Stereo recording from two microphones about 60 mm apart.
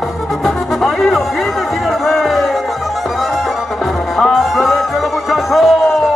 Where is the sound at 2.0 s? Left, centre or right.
Centre.